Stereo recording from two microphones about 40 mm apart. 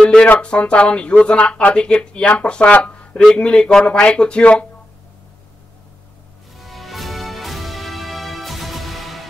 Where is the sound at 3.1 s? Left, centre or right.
Left.